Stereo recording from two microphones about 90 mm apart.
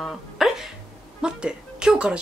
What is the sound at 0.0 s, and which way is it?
Music, centre (ahead or behind).